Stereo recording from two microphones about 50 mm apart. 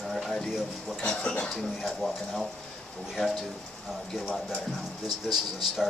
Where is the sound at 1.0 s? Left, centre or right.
Left.